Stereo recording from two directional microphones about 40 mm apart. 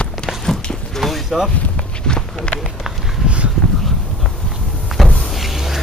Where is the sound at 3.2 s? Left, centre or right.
Right.